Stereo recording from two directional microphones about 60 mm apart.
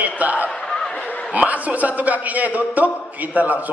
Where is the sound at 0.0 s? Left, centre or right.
Right.